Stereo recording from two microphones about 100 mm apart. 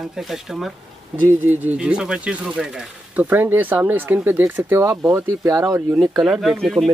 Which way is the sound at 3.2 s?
20° right (ahead or behind).